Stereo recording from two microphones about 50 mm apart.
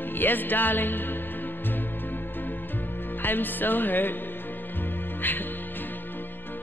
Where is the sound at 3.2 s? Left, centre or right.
Left.